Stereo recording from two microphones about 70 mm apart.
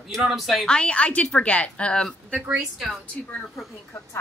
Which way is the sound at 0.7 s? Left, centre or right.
Centre.